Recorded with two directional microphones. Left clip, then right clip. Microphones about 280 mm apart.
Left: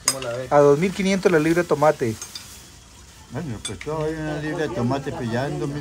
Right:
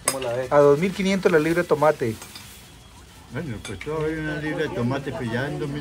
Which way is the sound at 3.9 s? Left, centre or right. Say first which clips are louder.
Even; left.